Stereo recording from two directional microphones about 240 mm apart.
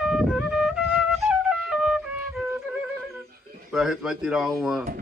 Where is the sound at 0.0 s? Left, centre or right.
Centre.